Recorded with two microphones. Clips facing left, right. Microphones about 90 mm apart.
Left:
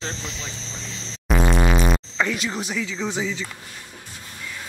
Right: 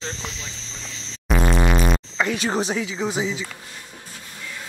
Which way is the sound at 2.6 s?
30° right (ahead or behind).